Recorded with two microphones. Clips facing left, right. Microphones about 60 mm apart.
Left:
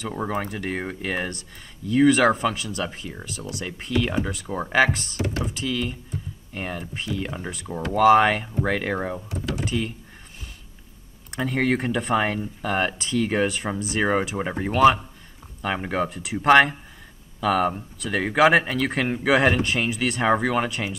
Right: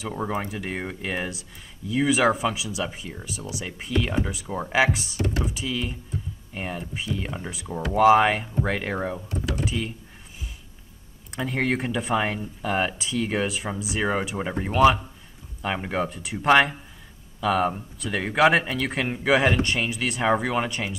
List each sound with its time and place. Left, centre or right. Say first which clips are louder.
0.3 s speech: left 2 dB; centre
7.2 s speech: left 1 dB; centre
7.8 s speech: left 1 dB; centre
8.9 s speech: left 1 dB; centre
9.7 s speech: left 2 dB; centre
11.2 s speech: left 2 dB; centre
14.4 s speech: left 1 dB; centre
15.6 s speech: left 1 dB; centre